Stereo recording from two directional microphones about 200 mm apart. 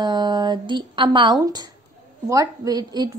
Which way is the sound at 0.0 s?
20° right (ahead or behind).